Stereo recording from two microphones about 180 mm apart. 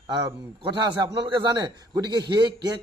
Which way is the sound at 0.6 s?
25° right (ahead or behind).